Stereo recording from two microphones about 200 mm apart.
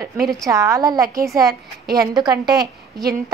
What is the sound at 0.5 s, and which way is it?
A woman's voice, 15° right (ahead or behind).